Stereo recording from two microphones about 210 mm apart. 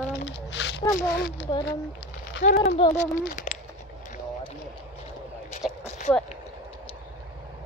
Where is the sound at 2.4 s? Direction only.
35° left (ahead or behind).